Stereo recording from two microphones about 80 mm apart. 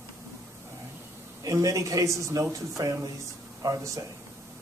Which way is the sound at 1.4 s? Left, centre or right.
Right.